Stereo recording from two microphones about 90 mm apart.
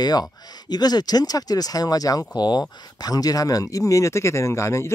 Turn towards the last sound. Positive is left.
turn(degrees=30)  # may be behind; listen again after turning